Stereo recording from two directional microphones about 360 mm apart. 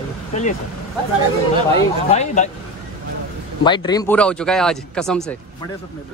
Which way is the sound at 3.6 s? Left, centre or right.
Centre.